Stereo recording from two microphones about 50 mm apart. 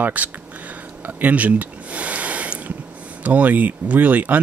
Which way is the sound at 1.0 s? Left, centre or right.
Right.